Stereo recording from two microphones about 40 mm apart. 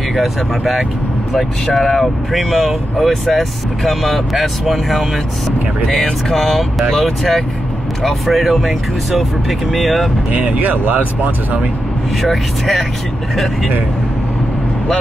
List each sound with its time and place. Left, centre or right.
0.1 s speech: centre
5.9 s speech: centre
10.3 s speech: right
12.2 s speech: centre